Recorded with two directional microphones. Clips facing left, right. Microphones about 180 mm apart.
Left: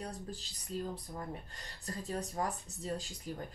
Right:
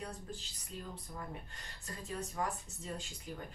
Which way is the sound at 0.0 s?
35° left (ahead or behind).